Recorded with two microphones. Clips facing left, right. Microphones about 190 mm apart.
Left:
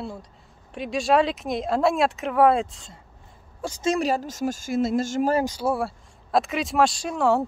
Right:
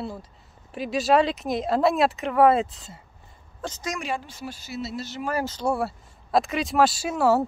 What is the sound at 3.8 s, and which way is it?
Speech, 35° left (ahead or behind).